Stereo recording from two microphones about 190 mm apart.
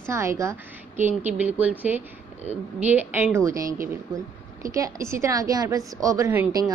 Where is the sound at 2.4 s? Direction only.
35° right (ahead or behind).